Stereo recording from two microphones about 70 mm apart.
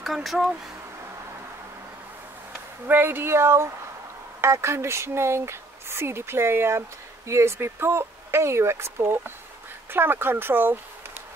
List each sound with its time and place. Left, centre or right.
0.0 s speech: centre
2.9 s speech: right